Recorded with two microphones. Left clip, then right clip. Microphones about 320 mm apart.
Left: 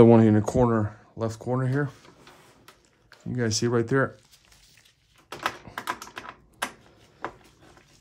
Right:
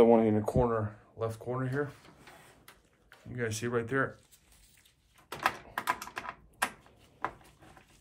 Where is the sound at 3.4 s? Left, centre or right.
Centre.